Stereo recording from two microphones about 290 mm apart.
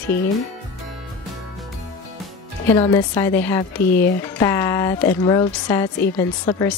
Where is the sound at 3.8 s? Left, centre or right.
Left.